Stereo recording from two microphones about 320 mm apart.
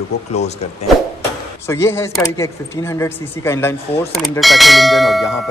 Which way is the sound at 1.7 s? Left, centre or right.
Centre.